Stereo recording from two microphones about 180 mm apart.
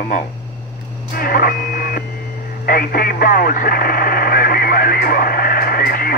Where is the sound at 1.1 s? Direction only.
55° left (ahead or behind).